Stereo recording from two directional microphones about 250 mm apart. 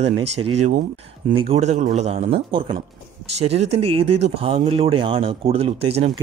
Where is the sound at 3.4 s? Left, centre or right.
Right.